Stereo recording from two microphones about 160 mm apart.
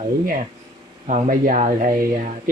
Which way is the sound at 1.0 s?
50° right (ahead or behind).